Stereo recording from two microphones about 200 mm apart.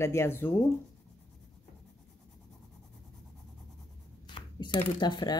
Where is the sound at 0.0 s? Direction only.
15° left (ahead or behind).